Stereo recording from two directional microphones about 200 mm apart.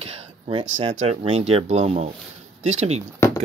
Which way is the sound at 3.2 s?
15° left (ahead or behind).